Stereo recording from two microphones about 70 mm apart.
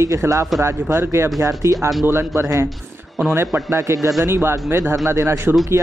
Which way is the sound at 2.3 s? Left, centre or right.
Right.